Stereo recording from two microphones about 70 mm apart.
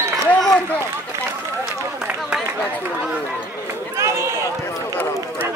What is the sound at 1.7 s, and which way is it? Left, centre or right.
Run, centre.